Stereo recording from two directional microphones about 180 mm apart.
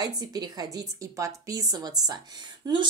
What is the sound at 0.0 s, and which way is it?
A woman's voice, 20° right (ahead or behind).